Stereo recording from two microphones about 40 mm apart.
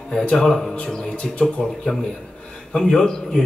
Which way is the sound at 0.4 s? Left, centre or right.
Centre.